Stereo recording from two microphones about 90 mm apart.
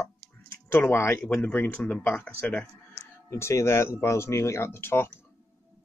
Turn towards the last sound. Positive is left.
turn(degrees=25)  # may be behind; listen again after turning